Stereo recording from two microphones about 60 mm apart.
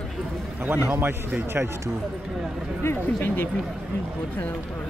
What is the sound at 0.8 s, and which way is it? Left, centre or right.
Speech, right.